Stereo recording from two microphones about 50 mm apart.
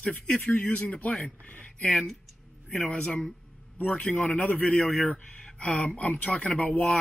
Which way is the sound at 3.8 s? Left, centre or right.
Left.